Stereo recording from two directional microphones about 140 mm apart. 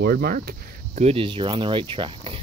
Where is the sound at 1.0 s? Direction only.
40° right (ahead or behind).